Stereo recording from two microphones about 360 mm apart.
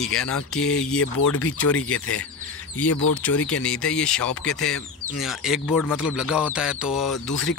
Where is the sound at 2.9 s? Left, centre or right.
Left.